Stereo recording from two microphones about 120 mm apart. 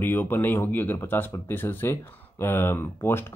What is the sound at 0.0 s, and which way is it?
Speech, 15° left (ahead or behind).